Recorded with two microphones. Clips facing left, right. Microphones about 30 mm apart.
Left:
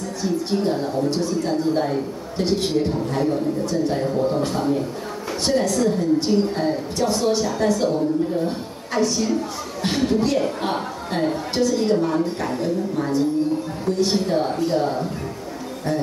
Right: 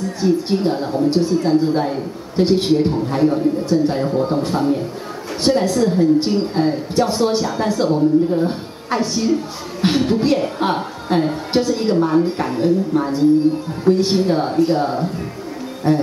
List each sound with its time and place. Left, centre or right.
0.2 s speech: right
4.4 s speech: right